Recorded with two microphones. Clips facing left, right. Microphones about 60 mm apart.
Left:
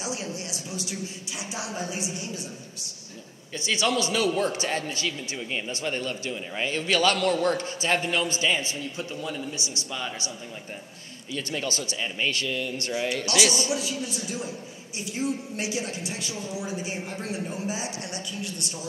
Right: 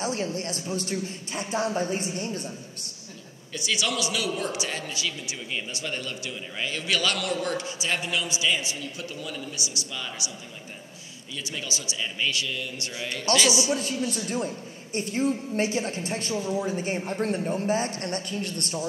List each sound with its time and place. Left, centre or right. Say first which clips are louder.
0.0 s a woman's voice: right 4 dB; right
3.5 s a man's voice: left 3 dB; left
11.3 s speech: left 4 dB; left
13.1 s a man's voice: right 4 dB; right